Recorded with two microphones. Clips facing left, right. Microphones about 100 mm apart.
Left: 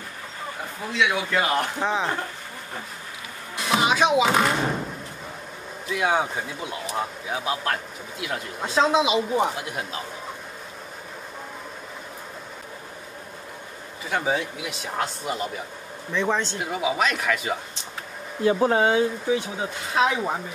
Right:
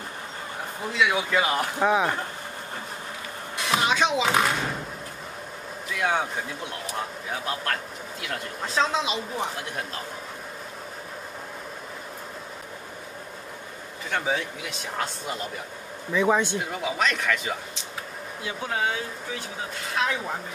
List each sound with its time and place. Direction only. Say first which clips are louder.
0.9 s speech: even; 5° right (ahead or behind)
3.5 s music: left 2 dB; centre (ahead or behind)
5.9 s speech: left 3 dB; 10° left (ahead or behind)
14.0 s speech: left 2 dB; 5° left (ahead or behind)
16.5 s speech: left 3 dB; 5° left (ahead or behind)
18.4 s speech: left 9 dB; 40° left (ahead or behind)